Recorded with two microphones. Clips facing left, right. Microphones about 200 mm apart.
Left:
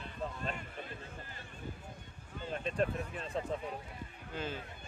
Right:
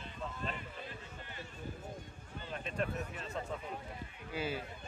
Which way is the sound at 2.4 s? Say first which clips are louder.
Left 4 dB; 35° left (ahead or behind).